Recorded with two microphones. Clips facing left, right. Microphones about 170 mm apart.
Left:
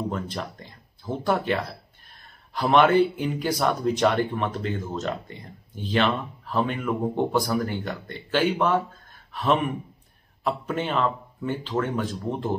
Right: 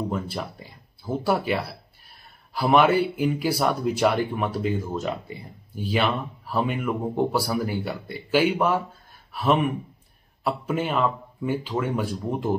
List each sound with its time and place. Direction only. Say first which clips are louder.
0.1 s speech: right 1 dB; 5° right (ahead or behind)